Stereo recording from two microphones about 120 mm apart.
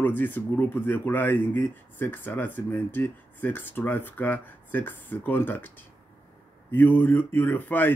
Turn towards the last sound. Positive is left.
turn(degrees=15)  # may be behind; listen again after turning